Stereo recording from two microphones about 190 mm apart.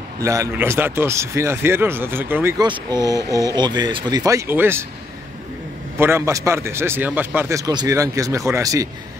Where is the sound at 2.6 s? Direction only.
20° right (ahead or behind).